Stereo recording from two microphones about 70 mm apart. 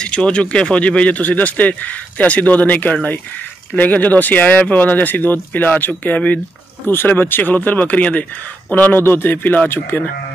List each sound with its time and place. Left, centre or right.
0.0 s speech: centre; by 10.0 s left